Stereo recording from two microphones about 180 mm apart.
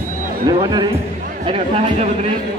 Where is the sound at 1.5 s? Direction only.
35° right (ahead or behind).